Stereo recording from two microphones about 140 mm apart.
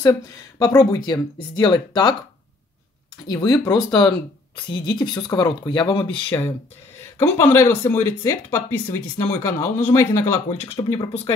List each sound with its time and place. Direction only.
0.6 s speech: 30° left (ahead or behind)
3.3 s speech: 25° left (ahead or behind)
7.2 s speech: 15° left (ahead or behind)
10.8 s speech: 35° left (ahead or behind)